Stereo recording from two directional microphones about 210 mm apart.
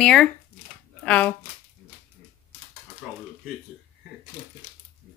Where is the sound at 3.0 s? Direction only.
5° right (ahead or behind).